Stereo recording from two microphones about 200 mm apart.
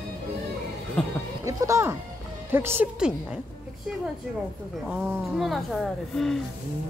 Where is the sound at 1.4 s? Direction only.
15° right (ahead or behind).